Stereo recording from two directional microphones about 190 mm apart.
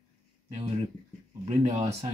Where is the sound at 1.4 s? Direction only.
35° right (ahead or behind).